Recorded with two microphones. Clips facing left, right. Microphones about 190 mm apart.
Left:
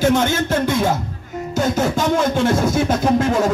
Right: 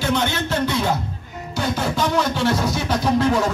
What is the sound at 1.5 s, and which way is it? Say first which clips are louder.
Music: left 5 dB; 45° left (ahead or behind).